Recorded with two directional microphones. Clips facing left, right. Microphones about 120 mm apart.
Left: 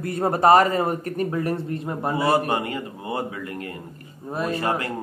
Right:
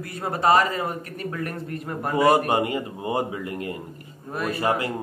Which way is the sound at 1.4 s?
30° left (ahead or behind).